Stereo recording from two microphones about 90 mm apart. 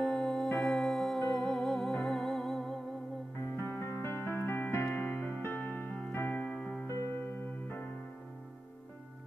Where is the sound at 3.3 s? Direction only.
30° left (ahead or behind).